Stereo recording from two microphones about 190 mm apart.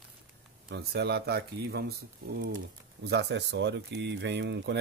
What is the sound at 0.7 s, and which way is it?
Speech, 55° right (ahead or behind).